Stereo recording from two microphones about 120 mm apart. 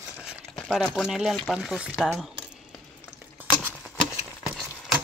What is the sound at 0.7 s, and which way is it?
Speech, centre (ahead or behind).